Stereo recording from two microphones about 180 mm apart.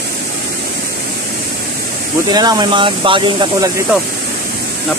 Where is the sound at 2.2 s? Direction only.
20° right (ahead or behind).